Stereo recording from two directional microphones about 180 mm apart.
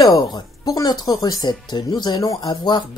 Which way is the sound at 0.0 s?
20° left (ahead or behind).